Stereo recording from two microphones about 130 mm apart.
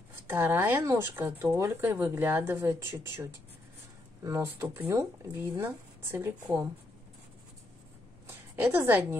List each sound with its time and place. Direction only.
0.3 s speech: 15° right (ahead or behind)
8.5 s speech: 15° right (ahead or behind)